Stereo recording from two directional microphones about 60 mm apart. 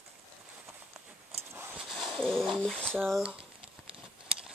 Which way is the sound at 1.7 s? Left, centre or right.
Centre.